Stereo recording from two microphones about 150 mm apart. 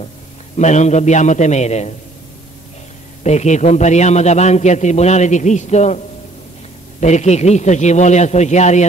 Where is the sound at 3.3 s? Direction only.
50° left (ahead or behind).